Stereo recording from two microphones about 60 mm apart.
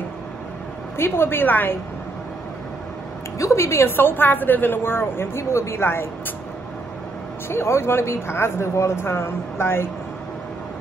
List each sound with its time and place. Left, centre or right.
0.9 s a woman's voice: left
3.3 s a woman's voice: left
7.4 s speech: left